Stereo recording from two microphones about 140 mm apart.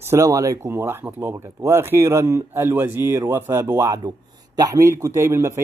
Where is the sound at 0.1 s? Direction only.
20° right (ahead or behind).